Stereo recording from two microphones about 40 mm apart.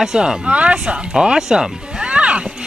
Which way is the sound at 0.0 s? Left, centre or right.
Centre.